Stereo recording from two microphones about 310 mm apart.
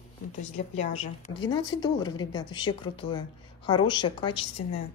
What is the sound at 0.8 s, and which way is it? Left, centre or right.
A woman's voice, left.